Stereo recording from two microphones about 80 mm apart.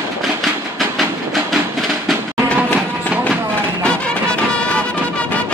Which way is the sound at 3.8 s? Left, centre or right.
Centre.